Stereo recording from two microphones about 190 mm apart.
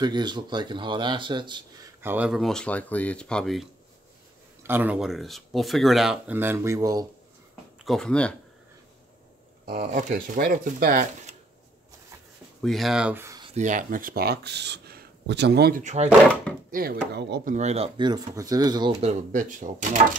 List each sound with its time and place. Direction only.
0.0 s speech: 25° right (ahead or behind)
2.0 s speech: 10° right (ahead or behind)
4.6 s speech: 10° right (ahead or behind)
7.8 s speech: 5° left (ahead or behind)
9.8 s speech: 40° right (ahead or behind)
12.6 s speech: centre (ahead or behind)
13.6 s speech: 40° right (ahead or behind); by 15.8 s 60° right (ahead or behind)
15.8 s speech: 40° right (ahead or behind)
16.7 s speech: 55° right (ahead or behind)
17.5 s speech: 35° right (ahead or behind)
19.3 s speech: 45° right (ahead or behind)